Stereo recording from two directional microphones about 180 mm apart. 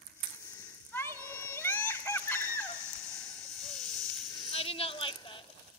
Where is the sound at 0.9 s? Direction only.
15° left (ahead or behind).